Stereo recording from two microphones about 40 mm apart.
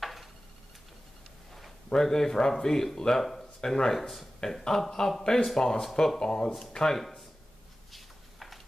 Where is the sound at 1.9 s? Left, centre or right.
Centre.